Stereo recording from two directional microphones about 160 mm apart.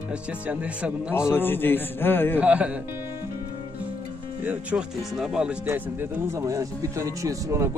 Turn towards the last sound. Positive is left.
turn(degrees=-20)  # may be behind; listen again after turning